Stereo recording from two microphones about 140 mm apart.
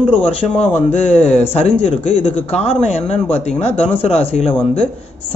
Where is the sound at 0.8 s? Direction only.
50° left (ahead or behind).